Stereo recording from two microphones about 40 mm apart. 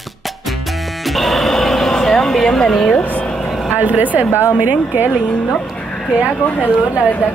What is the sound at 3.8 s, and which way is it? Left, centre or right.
Speech, right.